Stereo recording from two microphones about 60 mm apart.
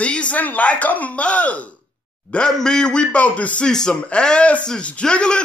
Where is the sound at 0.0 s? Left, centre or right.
Centre.